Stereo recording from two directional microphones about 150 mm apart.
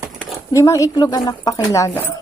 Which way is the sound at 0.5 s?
20° left (ahead or behind).